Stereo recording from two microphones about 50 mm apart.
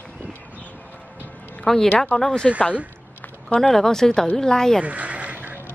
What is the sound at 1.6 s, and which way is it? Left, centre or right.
Speech, centre.